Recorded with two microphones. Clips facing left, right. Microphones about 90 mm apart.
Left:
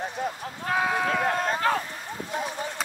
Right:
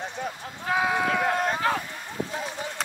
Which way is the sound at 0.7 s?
5° right (ahead or behind).